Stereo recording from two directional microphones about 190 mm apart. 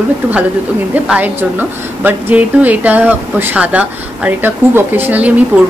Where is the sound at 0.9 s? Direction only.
5° right (ahead or behind).